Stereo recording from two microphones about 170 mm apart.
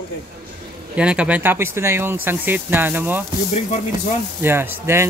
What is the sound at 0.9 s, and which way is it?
Speech, 5° right (ahead or behind).